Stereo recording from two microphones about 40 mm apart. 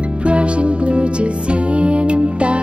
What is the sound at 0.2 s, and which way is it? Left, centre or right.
Music, right.